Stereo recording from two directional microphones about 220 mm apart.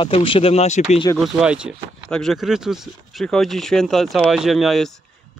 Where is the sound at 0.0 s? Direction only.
25° left (ahead or behind).